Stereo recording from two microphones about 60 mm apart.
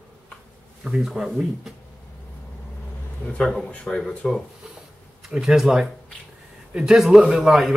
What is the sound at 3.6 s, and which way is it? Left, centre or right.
Speech, centre.